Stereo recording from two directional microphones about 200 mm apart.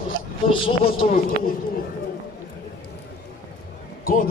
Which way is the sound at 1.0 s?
45° left (ahead or behind).